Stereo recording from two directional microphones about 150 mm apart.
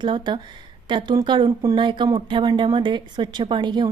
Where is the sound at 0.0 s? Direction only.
30° right (ahead or behind).